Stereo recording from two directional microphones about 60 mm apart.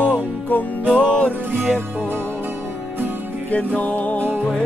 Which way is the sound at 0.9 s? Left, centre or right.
Left.